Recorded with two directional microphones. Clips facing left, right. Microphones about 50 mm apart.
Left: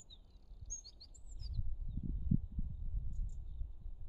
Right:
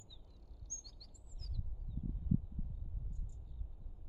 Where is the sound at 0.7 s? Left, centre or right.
Right.